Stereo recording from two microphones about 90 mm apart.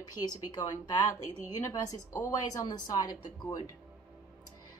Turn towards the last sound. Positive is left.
turn(degrees=55)  # may be behind; listen again after turning